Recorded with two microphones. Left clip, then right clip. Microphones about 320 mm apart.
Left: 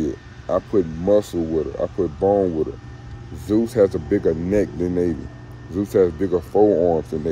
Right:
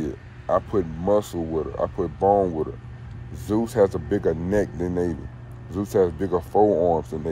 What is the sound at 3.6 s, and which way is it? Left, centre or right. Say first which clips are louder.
Speech: left 2 dB; centre.